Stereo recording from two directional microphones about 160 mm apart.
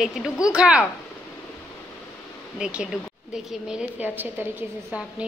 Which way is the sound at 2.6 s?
5° right (ahead or behind).